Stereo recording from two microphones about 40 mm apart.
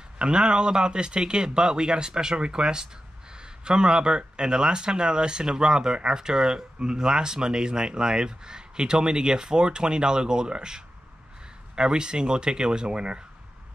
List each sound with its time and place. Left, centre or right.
0.2 s speech: right